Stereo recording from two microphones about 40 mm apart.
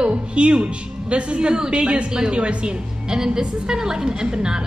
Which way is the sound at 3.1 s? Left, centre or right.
Centre.